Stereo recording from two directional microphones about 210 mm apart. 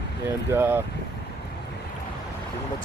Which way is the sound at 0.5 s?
10° right (ahead or behind).